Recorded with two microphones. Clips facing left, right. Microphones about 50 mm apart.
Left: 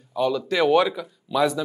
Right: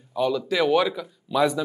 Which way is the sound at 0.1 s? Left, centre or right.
Centre.